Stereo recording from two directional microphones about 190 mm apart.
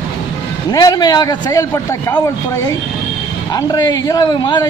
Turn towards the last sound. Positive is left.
turn(degrees=25)  # may be behind; listen again after turning